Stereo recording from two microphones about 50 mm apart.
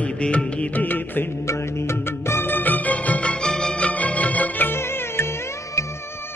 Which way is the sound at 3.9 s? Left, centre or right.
Left.